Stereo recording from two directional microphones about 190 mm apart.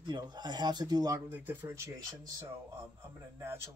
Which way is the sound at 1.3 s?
10° right (ahead or behind).